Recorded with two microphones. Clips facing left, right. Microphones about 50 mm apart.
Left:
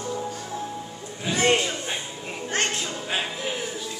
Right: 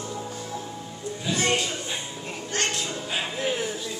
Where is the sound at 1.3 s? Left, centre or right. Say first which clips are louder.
Left 2 dB; left.